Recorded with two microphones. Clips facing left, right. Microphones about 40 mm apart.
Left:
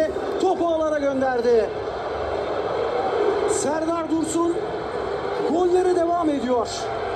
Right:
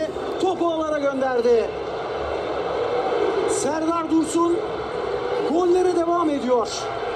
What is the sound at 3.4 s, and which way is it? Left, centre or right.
Speech, right.